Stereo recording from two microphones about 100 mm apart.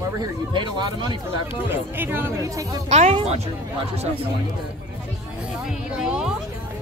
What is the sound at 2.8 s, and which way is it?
Speech, 90° right.